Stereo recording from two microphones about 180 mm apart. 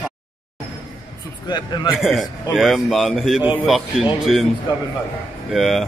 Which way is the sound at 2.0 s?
Centre (ahead or behind).